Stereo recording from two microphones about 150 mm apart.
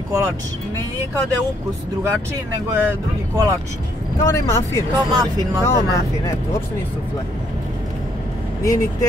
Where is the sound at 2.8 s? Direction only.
15° right (ahead or behind).